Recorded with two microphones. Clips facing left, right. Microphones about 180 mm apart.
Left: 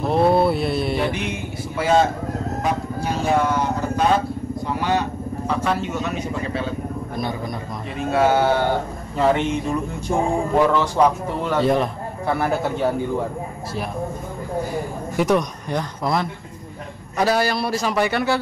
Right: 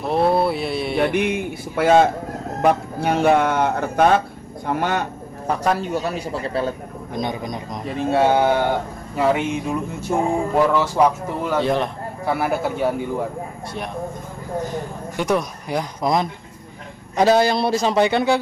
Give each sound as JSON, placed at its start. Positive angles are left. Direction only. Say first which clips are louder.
{"t": 0.0, "sound": "a sound", "louder": "left 1 dB", "side_deg": 0}
{"t": 0.9, "sound": "speech", "louder": "right 4 dB", "side_deg": -55}
{"t": 5.5, "sound": "a man's voice", "louder": "right 3 dB", "side_deg": -40}
{"t": 7.2, "sound": "speech", "louder": "right 3 dB", "side_deg": -20}
{"t": 9.1, "sound": "speech", "louder": "left 1 dB", "side_deg": -5}
{"t": 14.6, "sound": "speech", "louder": "left 2 dB", "side_deg": 10}
{"t": 15.7, "sound": "speech", "louder": "right 2 dB", "side_deg": -15}